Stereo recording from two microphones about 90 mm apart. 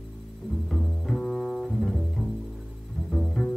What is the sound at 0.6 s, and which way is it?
Double bass, 5° left (ahead or behind).